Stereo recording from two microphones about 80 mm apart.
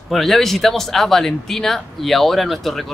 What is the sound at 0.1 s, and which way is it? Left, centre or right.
Speech, centre.